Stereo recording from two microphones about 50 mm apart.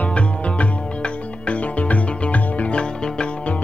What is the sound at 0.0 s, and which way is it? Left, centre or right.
Music, left.